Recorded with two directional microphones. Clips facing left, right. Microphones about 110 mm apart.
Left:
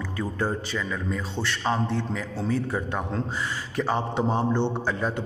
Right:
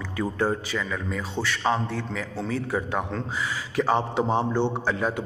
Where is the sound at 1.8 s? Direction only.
20° left (ahead or behind).